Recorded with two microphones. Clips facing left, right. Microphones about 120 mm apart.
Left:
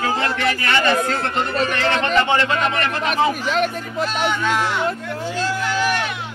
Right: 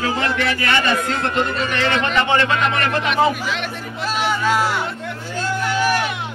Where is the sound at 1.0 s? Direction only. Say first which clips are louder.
Right 1 dB; 40° left (ahead or behind).